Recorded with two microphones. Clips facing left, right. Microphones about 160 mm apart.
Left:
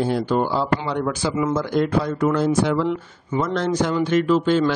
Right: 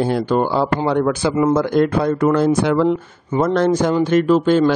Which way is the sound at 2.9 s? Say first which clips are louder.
Right 5 dB; 40° right (ahead or behind).